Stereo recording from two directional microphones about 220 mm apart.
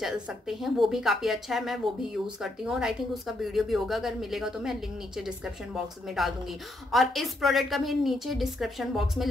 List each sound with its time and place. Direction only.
0.0 s speech: centre (ahead or behind)